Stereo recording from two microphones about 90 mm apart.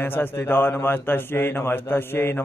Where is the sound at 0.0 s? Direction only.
25° left (ahead or behind).